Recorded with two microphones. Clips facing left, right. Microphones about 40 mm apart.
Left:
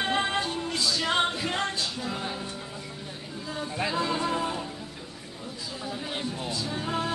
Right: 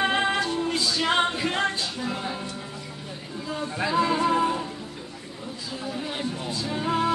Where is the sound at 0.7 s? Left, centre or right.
Right.